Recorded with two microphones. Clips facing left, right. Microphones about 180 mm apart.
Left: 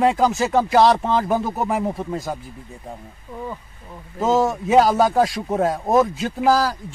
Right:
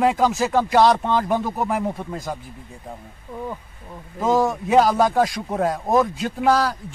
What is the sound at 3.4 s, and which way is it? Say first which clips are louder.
A man's voice: even; 5° right (ahead or behind).